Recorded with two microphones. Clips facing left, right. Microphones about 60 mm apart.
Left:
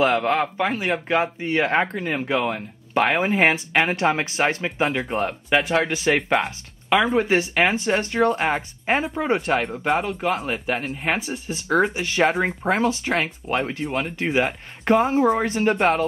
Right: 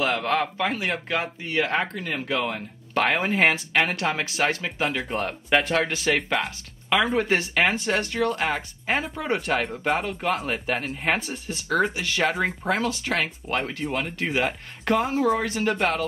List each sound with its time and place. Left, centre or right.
0.0 s speech: left
6.9 s speech: centre
9.6 s speech: centre; by 15.9 s left